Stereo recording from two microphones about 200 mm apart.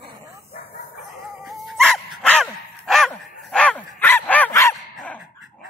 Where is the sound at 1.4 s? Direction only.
Centre (ahead or behind).